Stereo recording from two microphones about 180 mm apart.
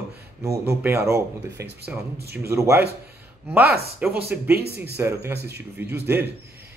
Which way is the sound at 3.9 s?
10° right (ahead or behind).